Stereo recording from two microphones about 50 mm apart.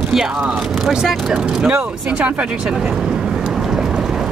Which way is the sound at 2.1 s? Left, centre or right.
Right.